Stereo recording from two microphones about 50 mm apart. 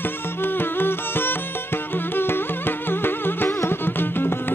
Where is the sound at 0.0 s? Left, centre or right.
Left.